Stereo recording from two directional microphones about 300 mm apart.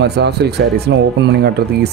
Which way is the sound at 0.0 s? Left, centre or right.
Right.